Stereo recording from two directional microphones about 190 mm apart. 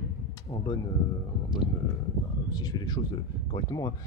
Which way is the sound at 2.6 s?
20° left (ahead or behind).